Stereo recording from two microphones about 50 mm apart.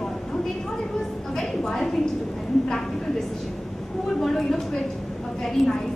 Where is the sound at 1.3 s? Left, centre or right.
Centre.